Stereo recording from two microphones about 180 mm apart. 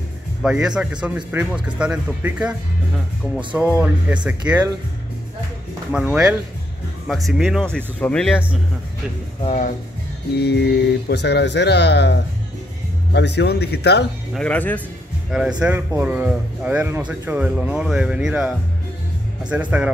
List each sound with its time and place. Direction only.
0.4 s speech: 5° right (ahead or behind)
3.8 s speech: 10° right (ahead or behind)
5.9 s speech: 5° right (ahead or behind)
9.4 s speech: 35° left (ahead or behind)
10.4 s speech: 65° left (ahead or behind)
14.3 s speech: 5° left (ahead or behind)
19.5 s speech: 10° right (ahead or behind)